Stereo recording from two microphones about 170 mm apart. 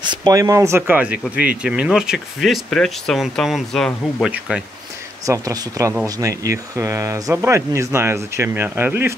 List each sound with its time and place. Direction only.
0.0 s speech: 25° right (ahead or behind); by 4.6 s 5° right (ahead or behind)
5.2 s speech: 20° right (ahead or behind)